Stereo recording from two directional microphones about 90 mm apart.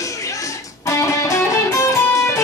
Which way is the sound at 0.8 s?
35° left (ahead or behind).